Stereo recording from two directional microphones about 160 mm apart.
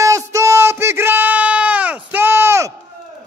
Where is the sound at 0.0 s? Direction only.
20° right (ahead or behind).